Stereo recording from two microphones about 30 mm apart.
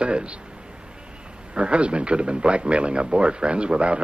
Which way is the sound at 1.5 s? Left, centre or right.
Right.